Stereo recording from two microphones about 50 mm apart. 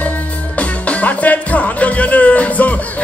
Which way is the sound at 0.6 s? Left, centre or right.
Left.